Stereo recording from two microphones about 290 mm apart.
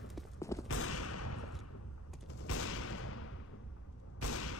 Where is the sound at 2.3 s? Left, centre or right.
Left.